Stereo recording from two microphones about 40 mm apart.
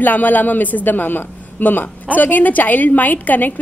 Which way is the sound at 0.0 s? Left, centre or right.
Left.